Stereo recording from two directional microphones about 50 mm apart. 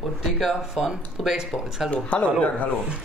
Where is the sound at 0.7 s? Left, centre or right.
Centre.